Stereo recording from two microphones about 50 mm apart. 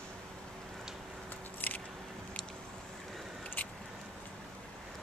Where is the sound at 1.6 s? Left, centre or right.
Left.